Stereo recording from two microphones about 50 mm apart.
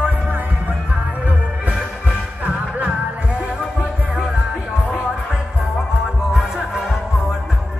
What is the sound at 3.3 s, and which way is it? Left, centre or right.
Music, centre.